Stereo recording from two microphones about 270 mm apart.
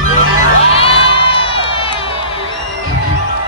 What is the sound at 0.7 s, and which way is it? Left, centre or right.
Crowd, centre.